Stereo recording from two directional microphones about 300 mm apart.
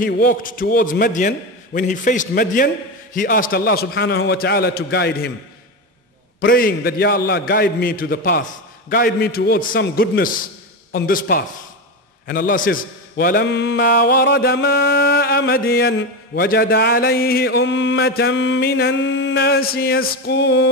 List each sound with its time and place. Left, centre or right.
0.0 s a man's voice: left
6.4 s a man's voice: left